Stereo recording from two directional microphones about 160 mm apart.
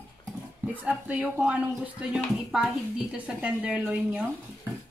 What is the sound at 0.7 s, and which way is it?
A woman's voice, 10° right (ahead or behind).